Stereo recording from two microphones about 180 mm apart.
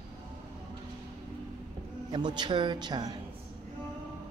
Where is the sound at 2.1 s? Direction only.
25° right (ahead or behind).